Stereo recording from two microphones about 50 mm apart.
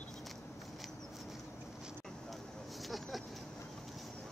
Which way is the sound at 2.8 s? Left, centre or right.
Centre.